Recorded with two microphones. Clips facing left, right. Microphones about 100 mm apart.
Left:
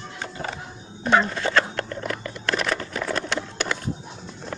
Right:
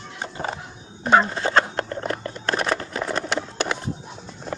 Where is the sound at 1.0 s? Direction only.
25° right (ahead or behind).